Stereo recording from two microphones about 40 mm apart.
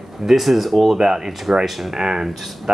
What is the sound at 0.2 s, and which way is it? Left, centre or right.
Speech, centre.